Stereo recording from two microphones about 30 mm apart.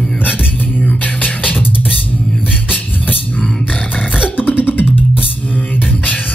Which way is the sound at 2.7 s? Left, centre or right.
Left.